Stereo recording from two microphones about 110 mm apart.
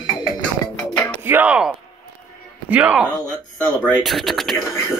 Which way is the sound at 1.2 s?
15° right (ahead or behind).